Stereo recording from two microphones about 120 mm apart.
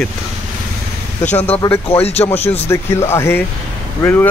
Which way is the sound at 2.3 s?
60° left (ahead or behind).